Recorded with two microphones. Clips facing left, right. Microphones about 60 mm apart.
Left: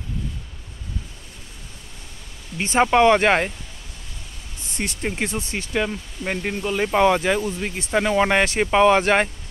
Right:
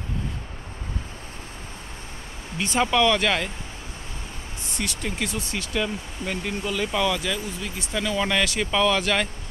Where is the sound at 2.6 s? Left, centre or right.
Left.